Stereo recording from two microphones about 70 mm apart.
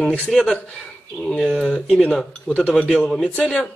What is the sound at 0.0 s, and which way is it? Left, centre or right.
Speech, left.